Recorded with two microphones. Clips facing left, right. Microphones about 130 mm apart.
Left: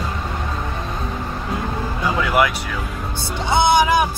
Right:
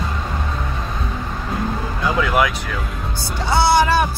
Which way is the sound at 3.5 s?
15° left (ahead or behind).